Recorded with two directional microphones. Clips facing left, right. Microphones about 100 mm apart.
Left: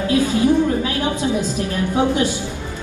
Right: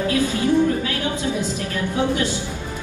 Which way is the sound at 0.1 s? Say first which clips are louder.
Left 5 dB; 20° left (ahead or behind).